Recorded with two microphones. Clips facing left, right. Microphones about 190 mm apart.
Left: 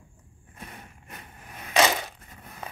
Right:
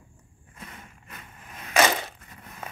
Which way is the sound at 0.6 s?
30° left (ahead or behind).